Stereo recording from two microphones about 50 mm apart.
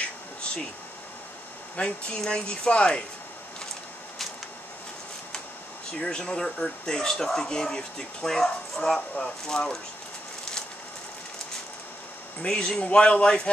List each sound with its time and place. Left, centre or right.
1.8 s speech: centre
5.9 s speech: centre
12.4 s speech: centre